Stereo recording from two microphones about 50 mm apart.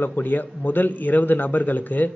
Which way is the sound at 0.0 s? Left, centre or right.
Left.